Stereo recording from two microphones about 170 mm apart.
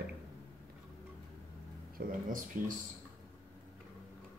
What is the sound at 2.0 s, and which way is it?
Speech, 60° right (ahead or behind).